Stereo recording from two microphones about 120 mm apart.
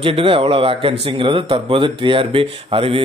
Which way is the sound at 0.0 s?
50° right (ahead or behind).